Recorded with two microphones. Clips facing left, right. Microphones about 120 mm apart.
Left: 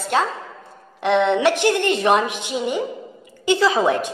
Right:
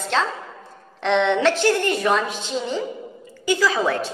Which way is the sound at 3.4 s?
25° left (ahead or behind).